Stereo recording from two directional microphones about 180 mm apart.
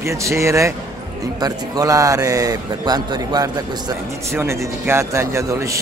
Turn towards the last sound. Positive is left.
turn(degrees=-15)  # may be behind; listen again after turning